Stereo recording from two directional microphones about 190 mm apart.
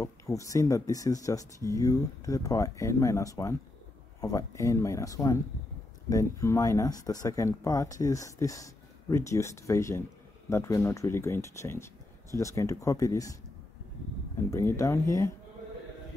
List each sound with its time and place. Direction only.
0.0 s speech: 15° left (ahead or behind)
14.5 s speech: 15° left (ahead or behind)